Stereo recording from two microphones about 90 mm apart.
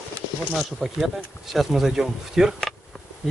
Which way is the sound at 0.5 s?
Centre (ahead or behind).